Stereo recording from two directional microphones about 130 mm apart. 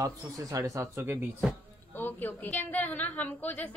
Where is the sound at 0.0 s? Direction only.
25° right (ahead or behind).